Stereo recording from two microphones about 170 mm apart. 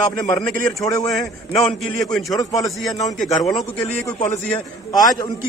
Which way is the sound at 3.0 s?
Centre (ahead or behind).